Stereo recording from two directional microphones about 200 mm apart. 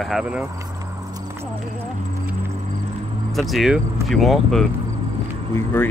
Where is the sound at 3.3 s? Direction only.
Centre (ahead or behind).